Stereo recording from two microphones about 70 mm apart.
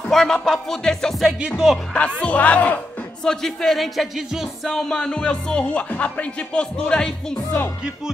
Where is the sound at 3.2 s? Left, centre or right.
Centre.